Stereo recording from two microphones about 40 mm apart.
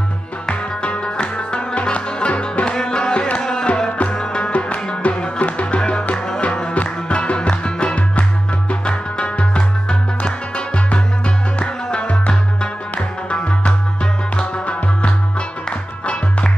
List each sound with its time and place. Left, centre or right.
0.5 s music: left
5.8 s music: left
6.4 s music: left
7.9 s music: left